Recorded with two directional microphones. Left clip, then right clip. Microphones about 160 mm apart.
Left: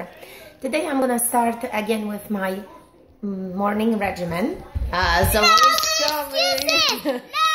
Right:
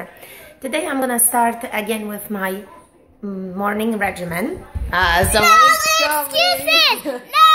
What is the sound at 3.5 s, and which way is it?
Speech, 5° left (ahead or behind).